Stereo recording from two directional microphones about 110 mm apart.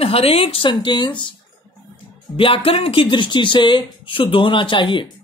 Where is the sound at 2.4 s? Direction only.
55° left (ahead or behind).